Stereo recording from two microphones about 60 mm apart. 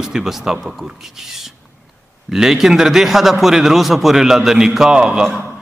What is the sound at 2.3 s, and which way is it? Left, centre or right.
A man's voice, centre.